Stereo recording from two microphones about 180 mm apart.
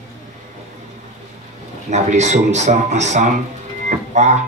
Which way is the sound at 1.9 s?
40° right (ahead or behind).